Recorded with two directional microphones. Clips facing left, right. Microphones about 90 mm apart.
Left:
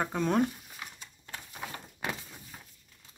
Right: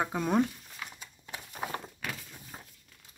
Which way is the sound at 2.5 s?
35° right (ahead or behind).